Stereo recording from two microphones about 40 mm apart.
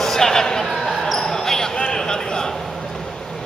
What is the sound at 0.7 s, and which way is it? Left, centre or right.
Basketball bounce, centre.